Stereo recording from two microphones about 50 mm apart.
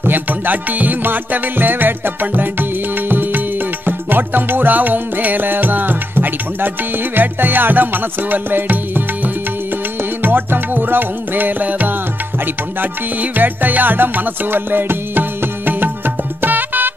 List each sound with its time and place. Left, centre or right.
0.0 s music: right